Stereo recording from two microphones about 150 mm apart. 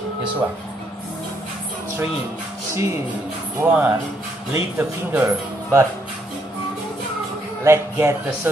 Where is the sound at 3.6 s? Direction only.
10° right (ahead or behind).